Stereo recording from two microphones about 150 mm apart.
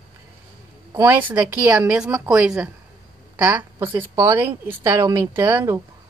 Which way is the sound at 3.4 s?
15° right (ahead or behind).